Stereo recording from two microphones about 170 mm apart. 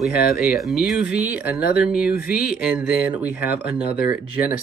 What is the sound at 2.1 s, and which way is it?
Speech, 60° left (ahead or behind).